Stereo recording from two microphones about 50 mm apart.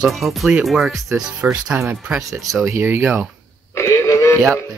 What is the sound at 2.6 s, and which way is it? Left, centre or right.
Speech, right.